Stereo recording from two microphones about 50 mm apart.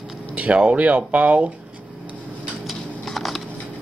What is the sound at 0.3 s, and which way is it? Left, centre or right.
Speech, right.